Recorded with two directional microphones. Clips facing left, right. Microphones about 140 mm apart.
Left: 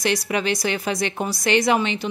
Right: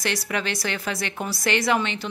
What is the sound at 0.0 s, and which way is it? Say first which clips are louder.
Speech: left 5 dB; 15° left (ahead or behind).